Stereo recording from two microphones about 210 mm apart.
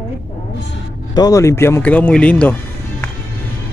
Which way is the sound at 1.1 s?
15° left (ahead or behind).